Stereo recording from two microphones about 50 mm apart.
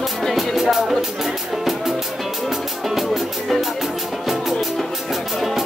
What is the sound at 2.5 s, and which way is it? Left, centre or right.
Music, centre.